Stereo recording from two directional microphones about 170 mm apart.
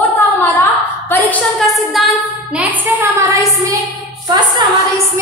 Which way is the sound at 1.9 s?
Centre (ahead or behind).